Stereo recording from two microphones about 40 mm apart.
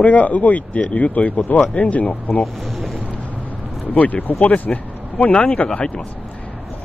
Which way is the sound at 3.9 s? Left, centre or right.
Left.